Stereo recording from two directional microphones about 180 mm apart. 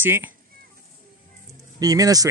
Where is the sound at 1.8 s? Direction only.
20° right (ahead or behind).